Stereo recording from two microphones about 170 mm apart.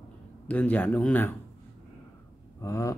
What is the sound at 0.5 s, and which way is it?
Speech, 10° left (ahead or behind).